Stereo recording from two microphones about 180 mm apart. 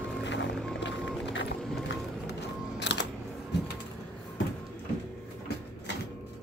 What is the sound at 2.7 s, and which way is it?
Scissors, 75° left (ahead or behind).